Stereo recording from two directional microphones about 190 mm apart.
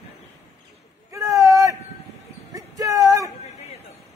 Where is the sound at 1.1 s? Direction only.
15° right (ahead or behind).